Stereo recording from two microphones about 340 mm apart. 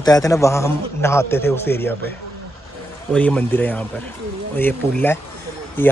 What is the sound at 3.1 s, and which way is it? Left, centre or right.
Speech, centre.